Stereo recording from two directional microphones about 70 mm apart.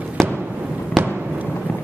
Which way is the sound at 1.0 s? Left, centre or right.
Right.